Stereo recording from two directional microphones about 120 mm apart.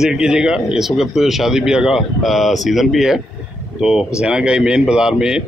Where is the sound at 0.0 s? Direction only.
5° right (ahead or behind).